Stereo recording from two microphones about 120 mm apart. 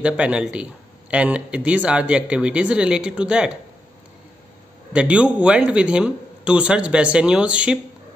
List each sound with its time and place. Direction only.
0.0 s speech: 10° right (ahead or behind)
4.9 s speech: 10° right (ahead or behind)